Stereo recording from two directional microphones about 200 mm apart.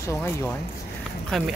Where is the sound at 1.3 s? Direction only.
Centre (ahead or behind).